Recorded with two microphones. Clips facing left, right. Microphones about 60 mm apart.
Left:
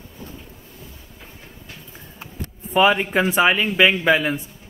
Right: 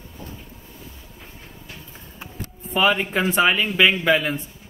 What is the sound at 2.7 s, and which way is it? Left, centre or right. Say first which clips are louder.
Speech: left 3 dB; centre.